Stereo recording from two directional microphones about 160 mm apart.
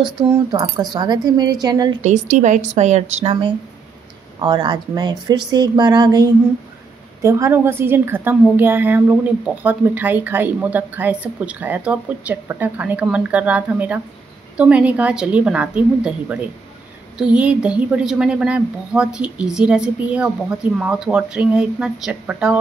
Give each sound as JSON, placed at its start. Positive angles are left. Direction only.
{"t": 0.0, "sound": "speech", "side_deg": -25}
{"t": 2.0, "sound": "a woman's voice", "side_deg": -45}